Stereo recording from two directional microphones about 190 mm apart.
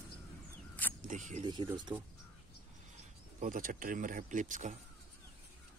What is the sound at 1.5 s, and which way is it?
Speech, 25° right (ahead or behind).